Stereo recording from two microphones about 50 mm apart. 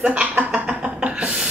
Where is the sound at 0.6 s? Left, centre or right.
Right.